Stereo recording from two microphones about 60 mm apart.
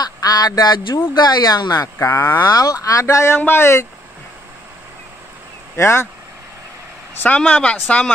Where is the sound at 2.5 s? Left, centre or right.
Left.